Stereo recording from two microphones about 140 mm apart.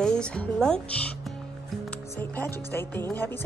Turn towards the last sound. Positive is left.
turn(degrees=15)  # may be behind; listen again after turning